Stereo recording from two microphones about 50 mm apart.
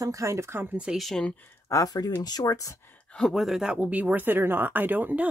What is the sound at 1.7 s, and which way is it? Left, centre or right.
Speech, left.